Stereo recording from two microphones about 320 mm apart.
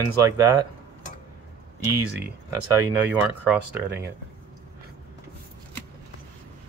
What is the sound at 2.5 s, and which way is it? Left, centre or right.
Speech, centre.